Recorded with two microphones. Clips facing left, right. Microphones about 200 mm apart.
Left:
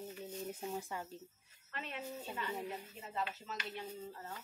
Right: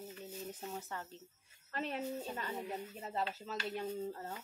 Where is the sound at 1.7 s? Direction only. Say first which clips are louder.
Right 6 dB; 35° right (ahead or behind).